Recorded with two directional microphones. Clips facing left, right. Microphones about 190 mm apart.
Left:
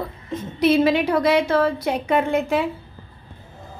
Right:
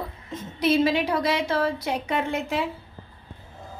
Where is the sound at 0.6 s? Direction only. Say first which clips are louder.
Left 4 dB; 60° left (ahead or behind).